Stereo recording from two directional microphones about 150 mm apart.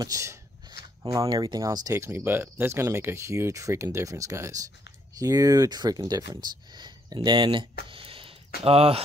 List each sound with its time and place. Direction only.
0.0 s speech: 20° right (ahead or behind)
7.9 s a sound: 35° right (ahead or behind)
8.6 s speech: 40° right (ahead or behind)